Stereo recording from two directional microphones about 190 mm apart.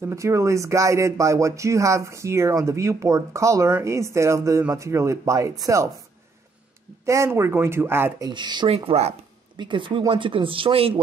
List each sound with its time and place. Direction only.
0.0 s speech: 15° right (ahead or behind)
7.1 s speech: 15° right (ahead or behind)
8.3 s speech: 25° right (ahead or behind)